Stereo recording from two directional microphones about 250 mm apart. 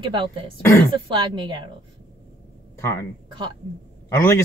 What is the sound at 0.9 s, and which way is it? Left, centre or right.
Speech, centre.